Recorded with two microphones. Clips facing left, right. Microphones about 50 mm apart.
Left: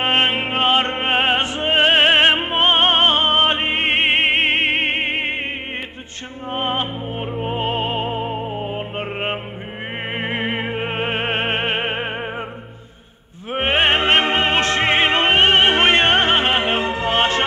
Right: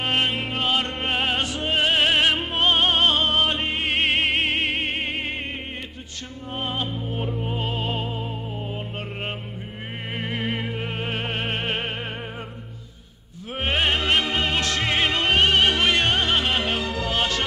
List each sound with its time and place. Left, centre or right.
0.0 s music: left
6.5 s music: left
13.5 s music: left